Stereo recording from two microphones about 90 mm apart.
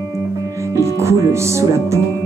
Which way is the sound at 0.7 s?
35° right (ahead or behind).